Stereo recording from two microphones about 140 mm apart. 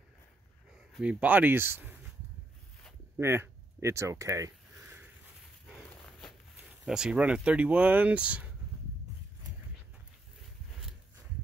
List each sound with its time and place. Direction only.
0.9 s speech: 10° right (ahead or behind)
3.2 s speech: 20° right (ahead or behind)
6.9 s speech: 5° right (ahead or behind)